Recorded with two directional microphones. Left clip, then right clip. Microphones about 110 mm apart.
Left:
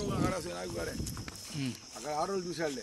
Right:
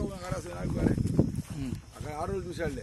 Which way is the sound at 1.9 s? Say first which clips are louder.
Left 2 dB; 60° left (ahead or behind).